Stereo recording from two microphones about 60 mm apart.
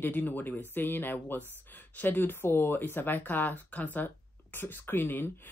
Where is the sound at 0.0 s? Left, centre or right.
Left.